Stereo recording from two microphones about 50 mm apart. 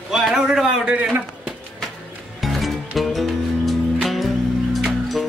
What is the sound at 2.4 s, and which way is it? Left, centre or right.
Music, centre.